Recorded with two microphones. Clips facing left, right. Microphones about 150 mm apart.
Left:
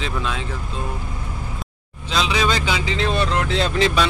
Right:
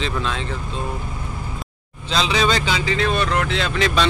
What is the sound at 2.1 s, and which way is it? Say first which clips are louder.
Speech: right 1 dB; 5° left (ahead or behind).